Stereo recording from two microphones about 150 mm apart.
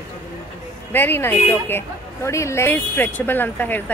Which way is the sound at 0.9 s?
15° left (ahead or behind).